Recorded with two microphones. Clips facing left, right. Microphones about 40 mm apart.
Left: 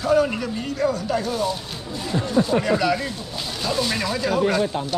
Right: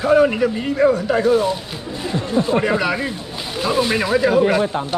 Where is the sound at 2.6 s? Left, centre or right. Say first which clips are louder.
Right 2 dB; right.